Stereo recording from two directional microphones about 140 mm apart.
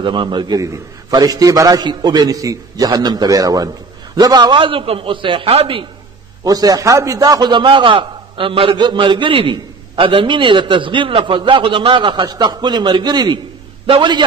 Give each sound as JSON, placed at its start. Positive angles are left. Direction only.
{"t": 0.0, "sound": "a man's voice", "side_deg": -35}
{"t": 6.4, "sound": "a man's voice", "side_deg": -25}